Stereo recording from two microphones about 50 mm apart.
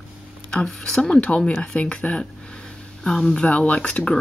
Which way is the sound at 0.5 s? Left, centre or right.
Centre.